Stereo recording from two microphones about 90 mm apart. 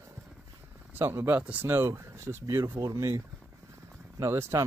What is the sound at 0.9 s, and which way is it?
Speech, 25° right (ahead or behind).